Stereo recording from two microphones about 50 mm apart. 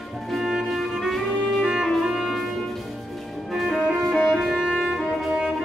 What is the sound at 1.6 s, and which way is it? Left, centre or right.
Music, centre.